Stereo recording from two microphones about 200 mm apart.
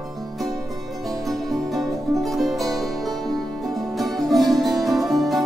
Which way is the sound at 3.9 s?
Centre (ahead or behind).